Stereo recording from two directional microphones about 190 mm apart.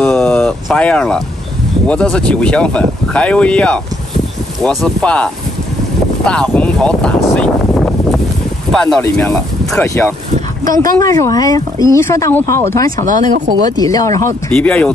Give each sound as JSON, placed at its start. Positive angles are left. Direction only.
{"t": 0.0, "sound": "speech", "side_deg": 5}
{"t": 6.2, "sound": "a sound", "side_deg": 5}
{"t": 8.7, "sound": "speech", "side_deg": 5}
{"t": 10.6, "sound": "speech", "side_deg": -45}
{"t": 10.9, "sound": "speech", "side_deg": 20}
{"t": 14.5, "sound": "speech", "side_deg": 5}